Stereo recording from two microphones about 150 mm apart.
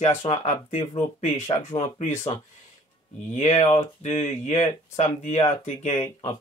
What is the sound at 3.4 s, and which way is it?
Speech, 45° left (ahead or behind).